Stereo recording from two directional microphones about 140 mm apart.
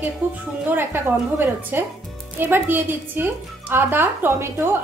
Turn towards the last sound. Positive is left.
turn(degrees=-15)  # may be behind; listen again after turning